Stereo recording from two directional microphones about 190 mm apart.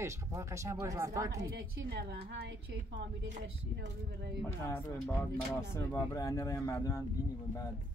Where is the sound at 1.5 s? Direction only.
55° right (ahead or behind).